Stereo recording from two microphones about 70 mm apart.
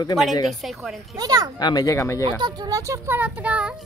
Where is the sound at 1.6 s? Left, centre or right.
Left.